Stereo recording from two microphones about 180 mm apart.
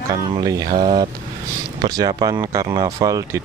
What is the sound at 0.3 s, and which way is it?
Speech, 20° right (ahead or behind).